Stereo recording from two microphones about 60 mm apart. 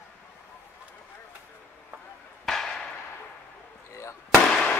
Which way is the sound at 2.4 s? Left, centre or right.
Centre.